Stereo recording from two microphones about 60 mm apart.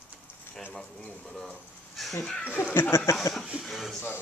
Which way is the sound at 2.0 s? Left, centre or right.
Centre.